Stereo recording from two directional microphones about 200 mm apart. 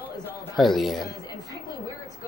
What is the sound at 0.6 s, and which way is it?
Speech, centre (ahead or behind).